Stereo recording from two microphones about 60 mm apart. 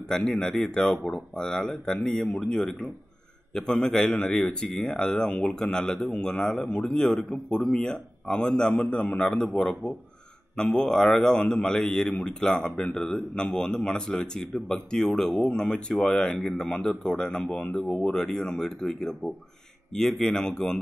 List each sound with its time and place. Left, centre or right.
0.2 s a man's voice: centre
2.2 s speech: left
3.5 s a man's voice: centre
17.8 s a man's voice: left
18.1 s a man's voice: centre